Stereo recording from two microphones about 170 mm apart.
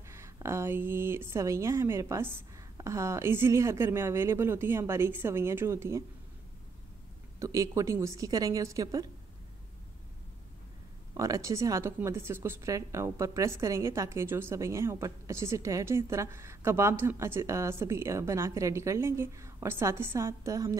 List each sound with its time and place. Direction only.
0.1 s a woman's voice: 15° right (ahead or behind)
7.3 s a woman's voice: 20° right (ahead or behind)
11.1 s a woman's voice: 20° right (ahead or behind)